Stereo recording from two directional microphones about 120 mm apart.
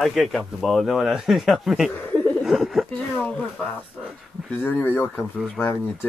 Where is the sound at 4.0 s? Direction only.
Centre (ahead or behind).